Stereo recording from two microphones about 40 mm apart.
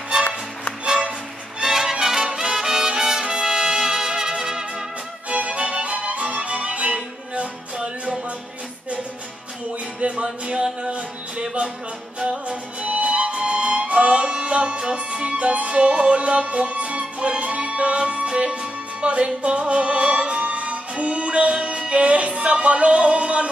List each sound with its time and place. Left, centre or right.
0.8 s music: right
2.2 s brass instrument: centre
5.3 s music: right
9.9 s music: right
12.4 s music: right